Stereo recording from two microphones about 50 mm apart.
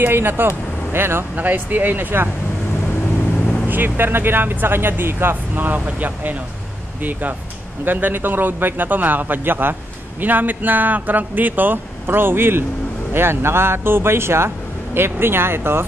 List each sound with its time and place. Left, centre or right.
0.0 s speech: right
1.3 s speech: right
3.6 s speech: right